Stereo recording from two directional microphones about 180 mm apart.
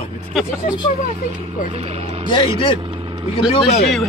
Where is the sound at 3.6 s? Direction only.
35° left (ahead or behind).